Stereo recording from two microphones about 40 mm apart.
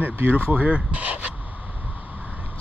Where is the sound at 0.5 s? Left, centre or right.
Right.